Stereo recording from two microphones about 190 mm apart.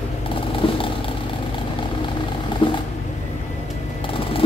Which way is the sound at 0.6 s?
25° left (ahead or behind).